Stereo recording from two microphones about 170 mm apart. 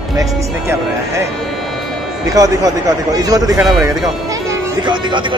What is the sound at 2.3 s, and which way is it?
Speech, 20° right (ahead or behind).